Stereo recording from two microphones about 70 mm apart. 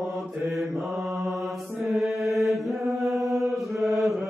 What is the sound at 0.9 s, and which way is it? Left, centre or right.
Mantra, centre.